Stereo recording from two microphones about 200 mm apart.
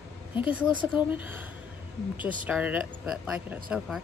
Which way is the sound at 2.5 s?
5° right (ahead or behind).